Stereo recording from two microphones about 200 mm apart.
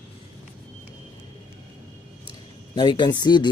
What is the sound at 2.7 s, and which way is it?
Speech, 20° left (ahead or behind).